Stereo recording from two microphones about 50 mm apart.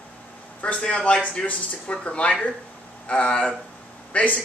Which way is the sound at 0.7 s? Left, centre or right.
Centre.